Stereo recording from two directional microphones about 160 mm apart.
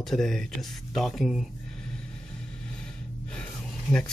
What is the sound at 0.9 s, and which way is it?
Speech, centre (ahead or behind).